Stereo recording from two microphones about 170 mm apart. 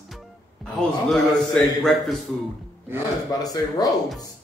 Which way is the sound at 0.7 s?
5° left (ahead or behind).